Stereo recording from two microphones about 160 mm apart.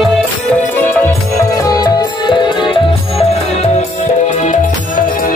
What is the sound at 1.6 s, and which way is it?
Music, 20° left (ahead or behind).